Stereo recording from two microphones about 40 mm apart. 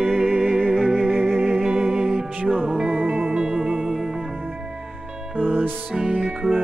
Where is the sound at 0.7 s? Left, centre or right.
Centre.